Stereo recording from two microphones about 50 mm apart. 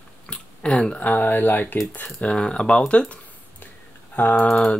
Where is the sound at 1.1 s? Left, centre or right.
Left.